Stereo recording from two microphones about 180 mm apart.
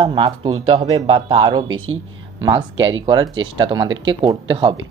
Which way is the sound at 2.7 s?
90° right.